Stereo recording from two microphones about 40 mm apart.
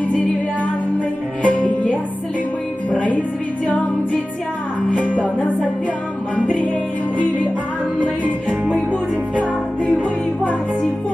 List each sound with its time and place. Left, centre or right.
0.9 s music: left
4.9 s music: left
8.0 s music: right